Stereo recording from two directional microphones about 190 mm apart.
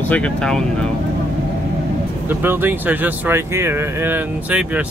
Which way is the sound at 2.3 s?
10° right (ahead or behind).